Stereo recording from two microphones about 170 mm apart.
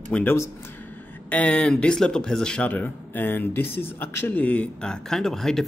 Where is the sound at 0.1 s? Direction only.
10° left (ahead or behind).